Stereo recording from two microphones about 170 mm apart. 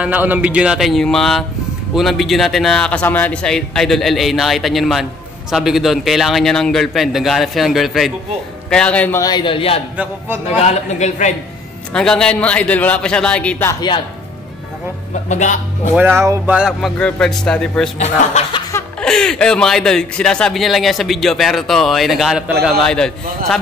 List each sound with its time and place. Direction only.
0.0 s a man's voice: 10° right (ahead or behind); by 9.2 s 10° left (ahead or behind)
9.2 s speech: 25° left (ahead or behind)
9.9 s a man's voice: 10° right (ahead or behind)
10.7 s speech: 40° left (ahead or behind)
11.9 s a man's voice: 5° left (ahead or behind)
13.7 s speech: 30° left (ahead or behind)
15.2 s speech: 45° left (ahead or behind)
15.9 s a man's voice: 10° right (ahead or behind)
16.5 s speech: 5° right (ahead or behind)
17.9 s speech: 40° left (ahead or behind)
18.7 s laughter: 15° left (ahead or behind)
19.0 s speech: 5° left (ahead or behind)